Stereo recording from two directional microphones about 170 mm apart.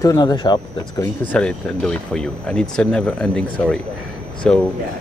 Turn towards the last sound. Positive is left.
turn(degrees=5)  # may be behind; listen again after turning